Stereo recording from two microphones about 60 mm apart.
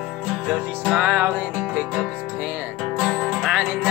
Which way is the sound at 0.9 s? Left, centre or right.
Centre.